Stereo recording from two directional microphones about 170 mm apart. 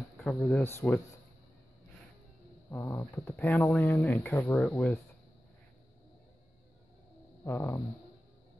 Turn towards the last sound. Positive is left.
turn(degrees=10)  # may be behind; listen again after turning